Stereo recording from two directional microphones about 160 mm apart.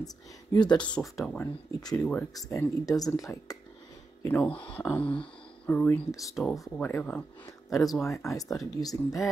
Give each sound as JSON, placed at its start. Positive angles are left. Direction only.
{"t": 0.0, "sound": "speech", "side_deg": 25}
{"t": 0.7, "sound": "speech", "side_deg": 5}
{"t": 2.3, "sound": "speech", "side_deg": 20}
{"t": 6.3, "sound": "speech", "side_deg": 0}
{"t": 6.7, "sound": "speech", "side_deg": 15}